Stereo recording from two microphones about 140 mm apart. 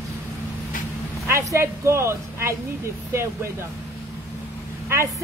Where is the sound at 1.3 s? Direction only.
20° right (ahead or behind).